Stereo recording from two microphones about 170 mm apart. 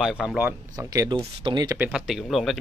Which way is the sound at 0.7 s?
20° right (ahead or behind).